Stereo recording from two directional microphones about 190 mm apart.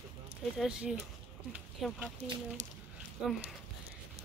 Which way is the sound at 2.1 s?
35° right (ahead or behind).